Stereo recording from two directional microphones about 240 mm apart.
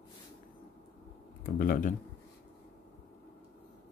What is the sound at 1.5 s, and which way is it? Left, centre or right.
Speech, left.